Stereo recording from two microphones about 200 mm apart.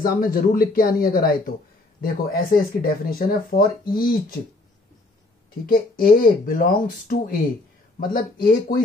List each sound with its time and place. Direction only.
0.0 s speech: 45° left (ahead or behind)
2.5 s speech: 45° left (ahead or behind)
5.7 s speech: 45° left (ahead or behind)